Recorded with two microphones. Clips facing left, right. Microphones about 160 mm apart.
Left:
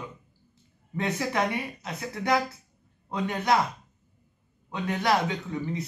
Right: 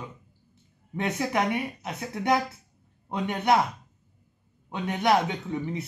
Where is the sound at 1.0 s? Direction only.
20° right (ahead or behind).